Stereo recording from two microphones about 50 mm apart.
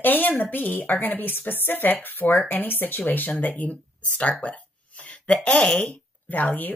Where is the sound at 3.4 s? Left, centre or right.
Left.